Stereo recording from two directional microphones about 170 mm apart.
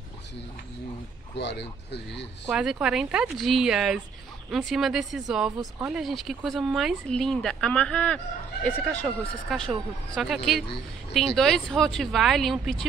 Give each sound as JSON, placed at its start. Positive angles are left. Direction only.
{"t": 1.3, "sound": "speech", "side_deg": 85}
{"t": 2.4, "sound": "speech", "side_deg": -5}